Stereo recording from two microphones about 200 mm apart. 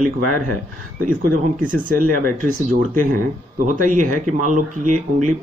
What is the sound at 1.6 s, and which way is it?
Speech, 45° right (ahead or behind).